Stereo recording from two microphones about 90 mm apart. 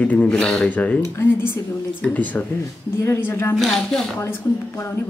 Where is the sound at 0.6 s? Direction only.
15° left (ahead or behind).